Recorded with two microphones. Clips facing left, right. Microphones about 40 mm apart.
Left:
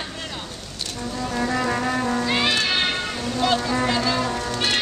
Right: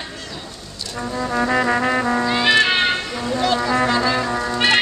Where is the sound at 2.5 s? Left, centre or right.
Right.